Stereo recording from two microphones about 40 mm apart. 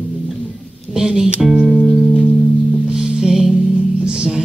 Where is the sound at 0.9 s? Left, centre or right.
Centre.